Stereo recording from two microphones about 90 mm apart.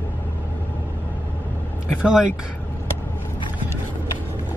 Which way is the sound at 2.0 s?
10° right (ahead or behind).